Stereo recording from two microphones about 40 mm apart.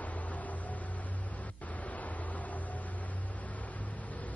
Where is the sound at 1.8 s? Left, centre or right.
Left.